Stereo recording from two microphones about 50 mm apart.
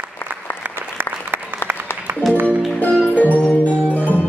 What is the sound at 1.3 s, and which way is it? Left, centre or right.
Applause, right.